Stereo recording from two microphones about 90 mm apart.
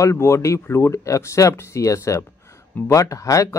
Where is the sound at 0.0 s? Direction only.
30° left (ahead or behind).